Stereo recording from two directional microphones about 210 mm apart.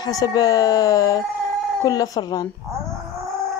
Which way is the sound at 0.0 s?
15° left (ahead or behind).